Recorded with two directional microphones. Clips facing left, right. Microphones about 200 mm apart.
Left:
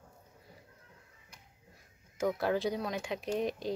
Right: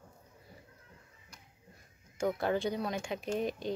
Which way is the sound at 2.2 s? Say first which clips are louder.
Left 1 dB; centre (ahead or behind).